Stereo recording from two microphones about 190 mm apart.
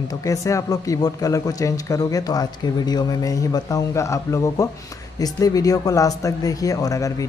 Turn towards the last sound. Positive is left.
turn(degrees=15)  # may be behind; listen again after turning